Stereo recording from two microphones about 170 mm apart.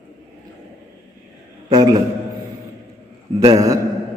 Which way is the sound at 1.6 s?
25° right (ahead or behind).